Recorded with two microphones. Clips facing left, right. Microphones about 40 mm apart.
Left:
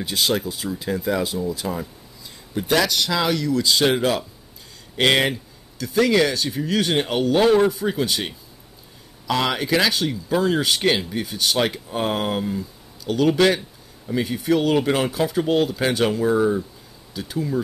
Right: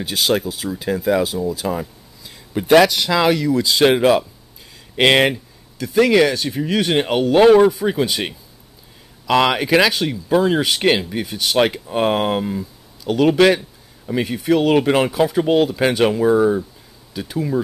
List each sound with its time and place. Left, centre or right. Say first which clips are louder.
0.0 s speech: right 3 dB; centre
1.7 s a sound: right 4 dB; centre
2.9 s speech: right 5 dB; centre
3.8 s speech: right 6 dB; right
7.3 s speech: right 6 dB; right
7.8 s speech: right 4 dB; centre
9.5 s speech: right 5 dB; right
14.3 s speech: right 4 dB; centre
14.7 s speech: right 4 dB; right
15.0 s speech: right 4 dB; centre